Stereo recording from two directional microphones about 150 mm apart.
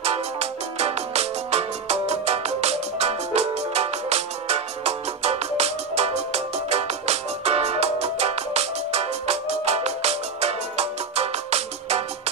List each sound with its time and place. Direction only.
0.0 s music: 45° right (ahead or behind)